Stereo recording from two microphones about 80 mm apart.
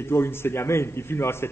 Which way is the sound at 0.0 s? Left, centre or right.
Left.